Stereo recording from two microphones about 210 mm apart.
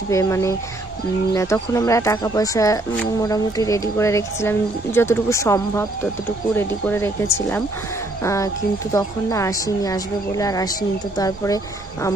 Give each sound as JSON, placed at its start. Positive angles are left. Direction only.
{"t": 0.1, "sound": "a woman's voice", "side_deg": 15}